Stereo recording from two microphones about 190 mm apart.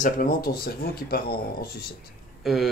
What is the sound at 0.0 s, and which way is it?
Speech, 50° left (ahead or behind).